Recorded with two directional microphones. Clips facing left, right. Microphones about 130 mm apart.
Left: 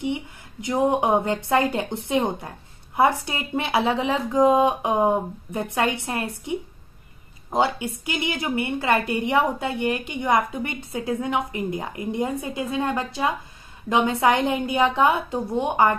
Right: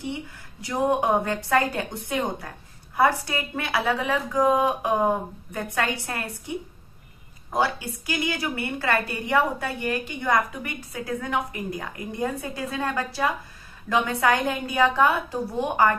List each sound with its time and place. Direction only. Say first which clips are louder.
0.0 s a woman's voice: left 5 dB; 20° left (ahead or behind)
7.5 s a woman's voice: left 3 dB; 20° left (ahead or behind)